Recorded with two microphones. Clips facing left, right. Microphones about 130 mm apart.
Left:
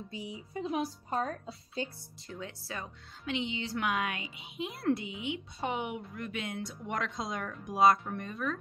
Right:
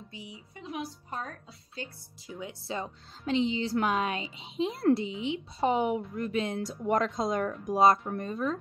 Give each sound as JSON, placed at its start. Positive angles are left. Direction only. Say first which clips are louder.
{"t": 0.1, "sound": "speech", "louder": "left 6 dB", "side_deg": 30}
{"t": 2.3, "sound": "speech", "louder": "right 5 dB", "side_deg": -25}
{"t": 7.2, "sound": "speech", "louder": "right 8 dB", "side_deg": -45}
{"t": 7.7, "sound": "speech", "louder": "right 2 dB", "side_deg": -25}